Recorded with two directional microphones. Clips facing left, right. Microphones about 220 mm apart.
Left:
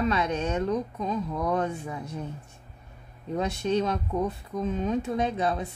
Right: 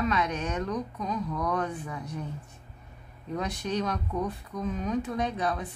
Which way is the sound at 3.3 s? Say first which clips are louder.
Left 5 dB; 25° left (ahead or behind).